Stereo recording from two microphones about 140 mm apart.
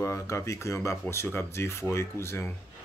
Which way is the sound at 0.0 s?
20° left (ahead or behind).